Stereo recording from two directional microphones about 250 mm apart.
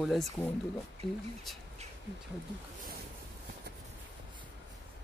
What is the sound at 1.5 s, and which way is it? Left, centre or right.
Speech, centre.